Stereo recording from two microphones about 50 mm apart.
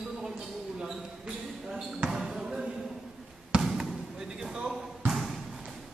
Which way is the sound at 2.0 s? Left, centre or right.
Centre.